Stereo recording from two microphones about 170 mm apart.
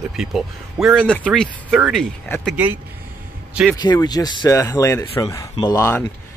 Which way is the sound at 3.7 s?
25° left (ahead or behind).